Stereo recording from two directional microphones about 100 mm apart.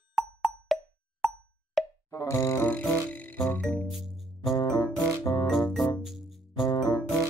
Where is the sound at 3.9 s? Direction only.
Centre (ahead or behind).